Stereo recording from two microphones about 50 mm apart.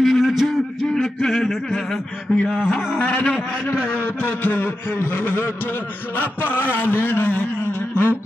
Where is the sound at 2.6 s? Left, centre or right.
Left.